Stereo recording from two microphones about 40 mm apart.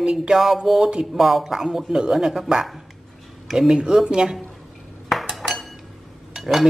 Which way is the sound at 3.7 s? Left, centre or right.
Centre.